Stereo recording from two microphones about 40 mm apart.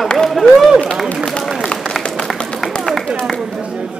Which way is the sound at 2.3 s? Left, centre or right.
Centre.